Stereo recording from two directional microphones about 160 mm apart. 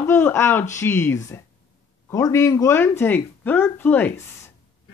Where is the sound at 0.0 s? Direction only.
15° left (ahead or behind).